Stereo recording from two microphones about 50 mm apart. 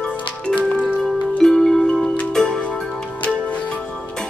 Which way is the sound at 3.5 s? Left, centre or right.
Left.